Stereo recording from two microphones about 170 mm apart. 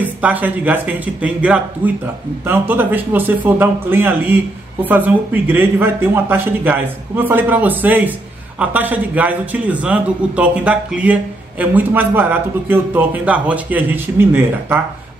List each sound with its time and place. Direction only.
0.0 s a man's voice: 10° right (ahead or behind)